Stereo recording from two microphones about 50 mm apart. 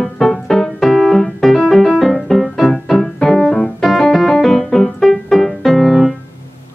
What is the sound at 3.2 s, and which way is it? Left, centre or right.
Keyboard, centre.